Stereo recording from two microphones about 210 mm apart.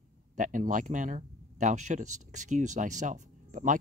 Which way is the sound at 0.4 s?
40° right (ahead or behind).